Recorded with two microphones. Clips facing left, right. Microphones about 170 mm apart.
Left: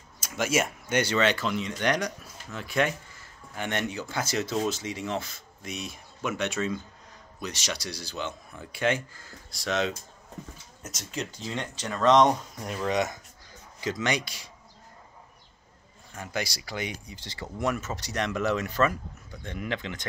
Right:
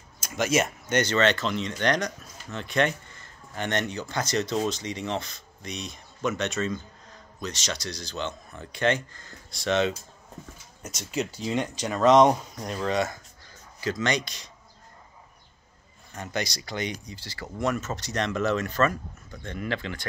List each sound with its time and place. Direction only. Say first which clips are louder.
0.2 s speech: right 2 dB; 5° left (ahead or behind)
11.4 s speech: right 6 dB; 15° right (ahead or behind)
12.8 s speech: even; 15° left (ahead or behind)
16.2 s speech: right 2 dB; 5° left (ahead or behind)
17.2 s speech: right 1 dB; 20° left (ahead or behind)